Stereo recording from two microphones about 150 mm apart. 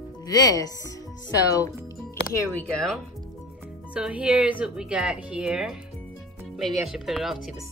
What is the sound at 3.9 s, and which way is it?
A woman's voice, 10° right (ahead or behind).